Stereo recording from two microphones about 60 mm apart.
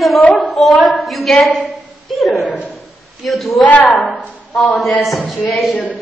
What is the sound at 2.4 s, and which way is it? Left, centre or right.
Speech, left.